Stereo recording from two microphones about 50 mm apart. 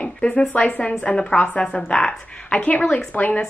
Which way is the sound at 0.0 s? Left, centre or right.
Left.